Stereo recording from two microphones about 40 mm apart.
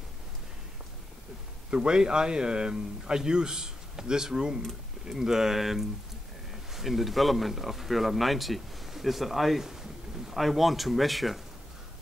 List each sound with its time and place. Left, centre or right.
1.7 s a man's voice: right; by 11.4 s centre